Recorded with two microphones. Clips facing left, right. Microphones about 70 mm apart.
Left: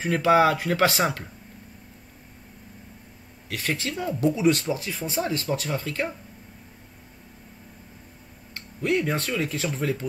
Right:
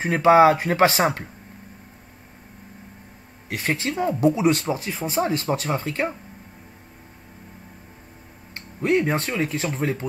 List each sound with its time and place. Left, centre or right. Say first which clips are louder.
0.0 s speech: right 5 dB; right
3.4 s speech: right 4 dB; right
8.5 s speech: right 4 dB; right